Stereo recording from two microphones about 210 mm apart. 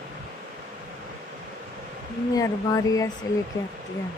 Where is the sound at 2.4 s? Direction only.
15° left (ahead or behind).